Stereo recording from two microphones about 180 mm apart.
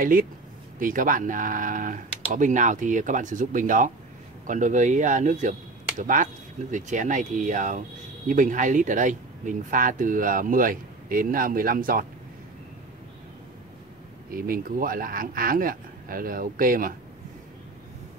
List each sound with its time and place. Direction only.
0.0 s speech: 50° right (ahead or behind)
14.3 s speech: 55° right (ahead or behind)